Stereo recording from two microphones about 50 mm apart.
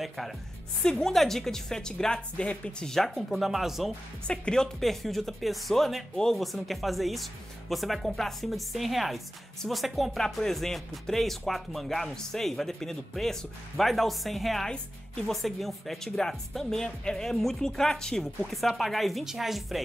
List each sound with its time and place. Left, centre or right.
0.8 s a woman's voice: centre; by 2.7 s left
2.8 s a woman's voice: centre
4.3 s speech: centre
4.7 s a woman's voice: centre
6.4 s a woman's voice: centre
14.7 s speech: centre
15.3 s a woman's voice: centre